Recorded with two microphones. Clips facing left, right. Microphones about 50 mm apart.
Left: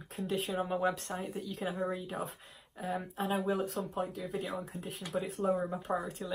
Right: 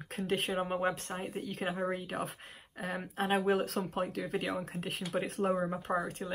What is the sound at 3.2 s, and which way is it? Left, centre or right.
Speech, right.